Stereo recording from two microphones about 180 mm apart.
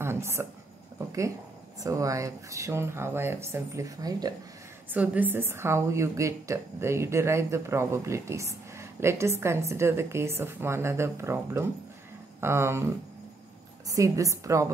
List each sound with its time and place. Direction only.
0.0 s a sound: 15° right (ahead or behind)
0.9 s a woman's voice: 15° right (ahead or behind)
4.8 s a woman's voice: 10° right (ahead or behind)
13.8 s a woman's voice: 20° right (ahead or behind)